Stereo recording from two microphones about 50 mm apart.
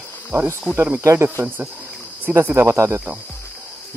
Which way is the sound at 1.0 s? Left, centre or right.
Right.